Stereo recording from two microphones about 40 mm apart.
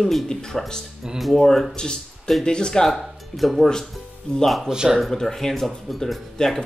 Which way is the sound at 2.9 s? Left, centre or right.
Centre.